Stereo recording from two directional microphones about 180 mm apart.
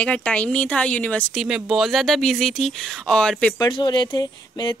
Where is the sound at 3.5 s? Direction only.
20° left (ahead or behind).